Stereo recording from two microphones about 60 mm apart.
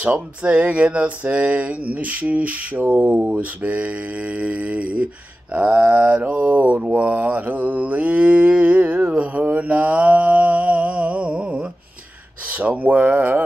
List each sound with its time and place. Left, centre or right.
0.0 s mantra: centre